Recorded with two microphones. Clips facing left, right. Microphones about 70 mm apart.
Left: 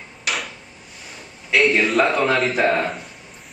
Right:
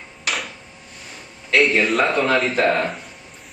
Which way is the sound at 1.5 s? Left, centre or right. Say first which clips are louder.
Even; centre.